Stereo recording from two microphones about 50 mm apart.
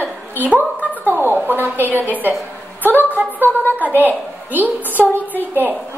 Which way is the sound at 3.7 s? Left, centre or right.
Right.